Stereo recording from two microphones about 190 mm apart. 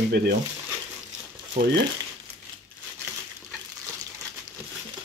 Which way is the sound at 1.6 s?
45° right (ahead or behind).